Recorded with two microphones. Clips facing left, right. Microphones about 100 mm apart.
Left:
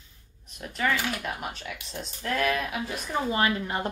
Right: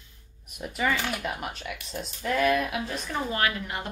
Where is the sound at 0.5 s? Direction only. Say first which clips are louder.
Even; 5° right (ahead or behind).